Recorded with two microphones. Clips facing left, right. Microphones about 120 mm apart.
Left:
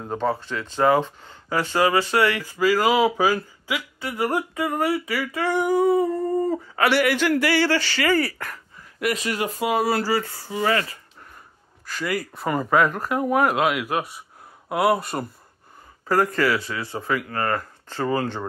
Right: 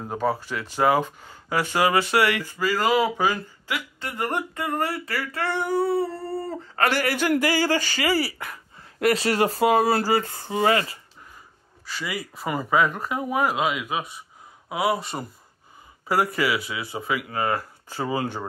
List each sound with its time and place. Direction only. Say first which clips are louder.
0.0 s speech: left 1 dB; 5° right (ahead or behind)
2.4 s speech: left 4 dB; 10° left (ahead or behind)
7.0 s speech: left 2 dB; 40° right (ahead or behind)
10.3 s speech: right 2 dB; 25° right (ahead or behind)
11.9 s speech: left 5 dB; 5° right (ahead or behind)
16.1 s speech: left 2 dB; 10° right (ahead or behind)